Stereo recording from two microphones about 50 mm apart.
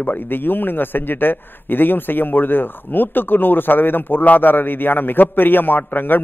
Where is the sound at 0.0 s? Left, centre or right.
Left.